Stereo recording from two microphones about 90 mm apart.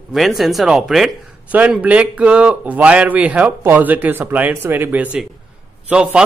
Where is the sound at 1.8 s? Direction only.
15° right (ahead or behind).